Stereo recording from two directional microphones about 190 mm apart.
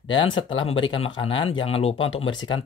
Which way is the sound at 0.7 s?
25° left (ahead or behind).